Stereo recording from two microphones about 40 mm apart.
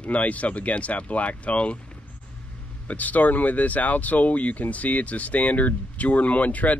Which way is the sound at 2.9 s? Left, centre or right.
Left.